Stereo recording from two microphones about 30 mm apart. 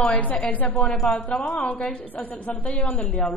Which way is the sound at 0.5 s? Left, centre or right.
Left.